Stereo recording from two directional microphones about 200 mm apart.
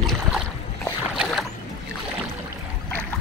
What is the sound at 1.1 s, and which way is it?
Boat, centre (ahead or behind).